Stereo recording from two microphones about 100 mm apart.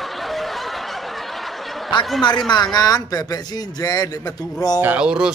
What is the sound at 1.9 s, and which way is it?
Speech, 55° left (ahead or behind).